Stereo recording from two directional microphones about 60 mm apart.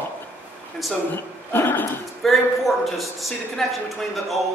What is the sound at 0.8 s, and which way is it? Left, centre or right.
Speech, centre.